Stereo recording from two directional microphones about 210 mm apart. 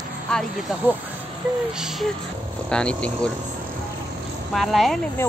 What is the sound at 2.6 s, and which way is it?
Speech, 5° left (ahead or behind).